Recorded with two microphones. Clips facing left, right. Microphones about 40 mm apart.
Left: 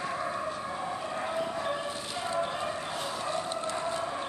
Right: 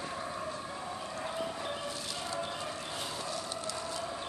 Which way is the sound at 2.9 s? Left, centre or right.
Centre.